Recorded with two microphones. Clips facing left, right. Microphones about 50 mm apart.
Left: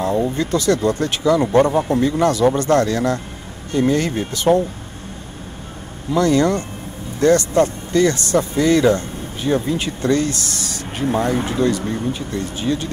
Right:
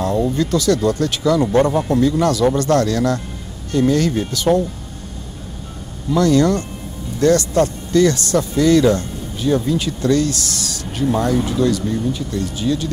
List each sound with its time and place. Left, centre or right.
0.0 s speech: left
6.1 s speech: left